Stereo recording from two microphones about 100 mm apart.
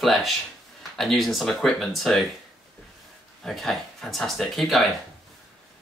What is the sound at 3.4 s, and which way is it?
Speech, centre (ahead or behind).